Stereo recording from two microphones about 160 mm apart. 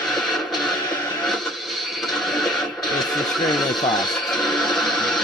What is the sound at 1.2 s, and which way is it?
Television, centre (ahead or behind).